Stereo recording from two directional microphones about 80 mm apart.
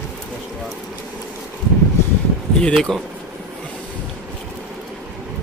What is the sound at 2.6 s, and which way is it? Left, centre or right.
Speech, centre.